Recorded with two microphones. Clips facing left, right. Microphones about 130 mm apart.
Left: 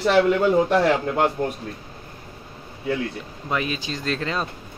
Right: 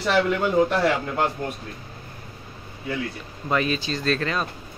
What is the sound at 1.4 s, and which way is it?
Speech, 40° left (ahead or behind).